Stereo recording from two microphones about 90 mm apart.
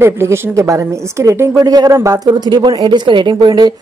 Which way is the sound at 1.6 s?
45° right (ahead or behind).